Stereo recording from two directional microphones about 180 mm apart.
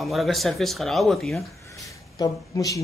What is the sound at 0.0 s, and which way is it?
Speech, centre (ahead or behind).